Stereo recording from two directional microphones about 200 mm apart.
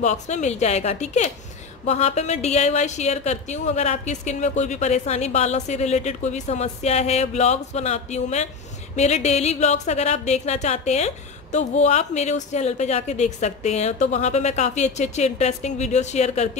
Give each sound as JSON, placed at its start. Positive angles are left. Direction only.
{"t": 0.0, "sound": "a woman's voice", "side_deg": 35}